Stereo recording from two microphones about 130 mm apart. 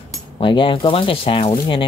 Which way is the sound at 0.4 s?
40° left (ahead or behind).